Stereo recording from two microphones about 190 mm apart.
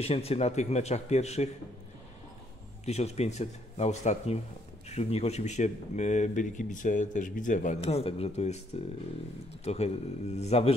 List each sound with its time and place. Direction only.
0.0 s speech: 30° left (ahead or behind)
2.8 s speech: 35° left (ahead or behind)